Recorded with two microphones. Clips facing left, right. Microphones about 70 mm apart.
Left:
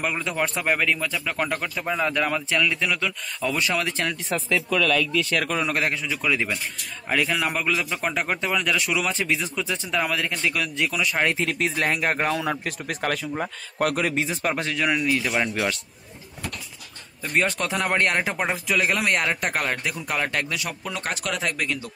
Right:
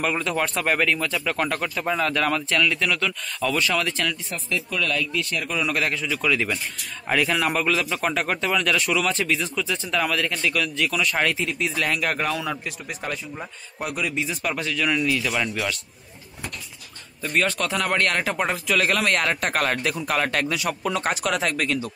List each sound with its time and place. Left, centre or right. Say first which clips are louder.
0.0 s a man's voice: right 2 dB; centre
3.5 s speech: right 1 dB; left
5.6 s speech: even; left
6.0 s a man's voice: right 1 dB; centre
7.1 s a man's voice: right 2 dB; centre
11.3 s speech: left 1 dB; left
11.7 s a man's voice: left 1 dB; left
17.3 s speech: even; left; by 21.7 s centre